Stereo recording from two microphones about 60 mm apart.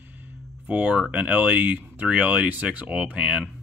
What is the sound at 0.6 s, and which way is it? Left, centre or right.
Speech, right.